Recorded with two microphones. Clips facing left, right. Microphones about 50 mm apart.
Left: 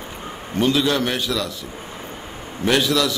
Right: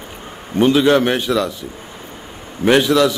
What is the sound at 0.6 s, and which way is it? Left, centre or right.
Speech, right.